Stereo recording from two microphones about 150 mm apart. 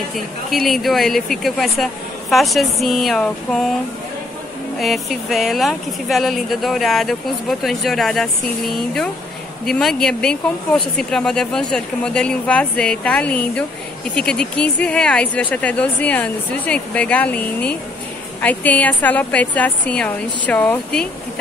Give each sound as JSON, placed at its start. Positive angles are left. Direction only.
{"t": 0.1, "sound": "speech", "side_deg": 0}
{"t": 4.7, "sound": "a woman's voice", "side_deg": 0}